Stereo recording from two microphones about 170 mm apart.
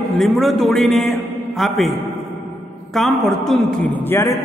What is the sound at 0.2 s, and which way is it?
A man's voice, centre (ahead or behind).